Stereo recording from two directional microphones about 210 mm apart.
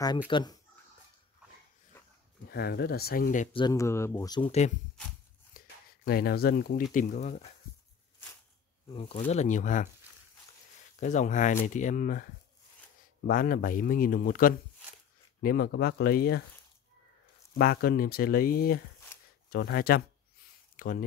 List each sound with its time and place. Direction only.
0.3 s speech: 20° left (ahead or behind)
1.9 s dog: 10° left (ahead or behind)
2.5 s speech: 50° left (ahead or behind)
3.5 s speech: 15° left (ahead or behind)
4.5 s speech: 35° left (ahead or behind)
5.5 s a sound: 45° left (ahead or behind)
6.0 s speech: 45° left (ahead or behind)
8.8 s speech: 25° left (ahead or behind)
11.0 s speech: 35° left (ahead or behind)
13.3 s speech: 40° left (ahead or behind)
17.6 s speech: 45° left (ahead or behind)
20.7 s a sound: 40° left (ahead or behind)